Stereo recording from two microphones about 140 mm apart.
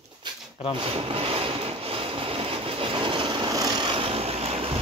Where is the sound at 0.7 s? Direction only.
40° right (ahead or behind).